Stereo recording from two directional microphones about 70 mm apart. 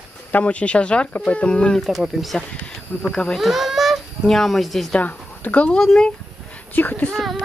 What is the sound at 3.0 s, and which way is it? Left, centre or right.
Speech, centre.